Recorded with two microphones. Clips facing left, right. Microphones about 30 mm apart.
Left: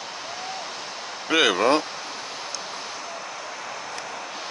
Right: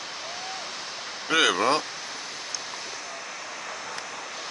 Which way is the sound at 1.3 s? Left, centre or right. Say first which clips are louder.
Left 3 dB; centre.